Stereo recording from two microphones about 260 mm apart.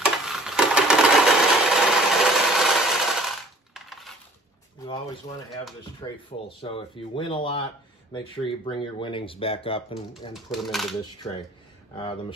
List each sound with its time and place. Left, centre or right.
0.0 s a sound: centre
3.7 s coin: centre
6.0 s speech: centre
10.3 s speech: centre
11.9 s speech: left